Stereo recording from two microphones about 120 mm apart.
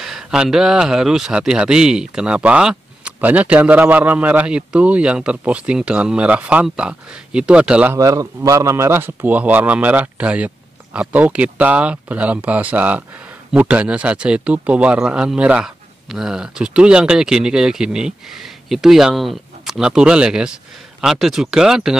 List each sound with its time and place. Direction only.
0.0 s speech: 5° right (ahead or behind)
7.9 s a man's voice: 30° right (ahead or behind); by 21.9 s 5° right (ahead or behind)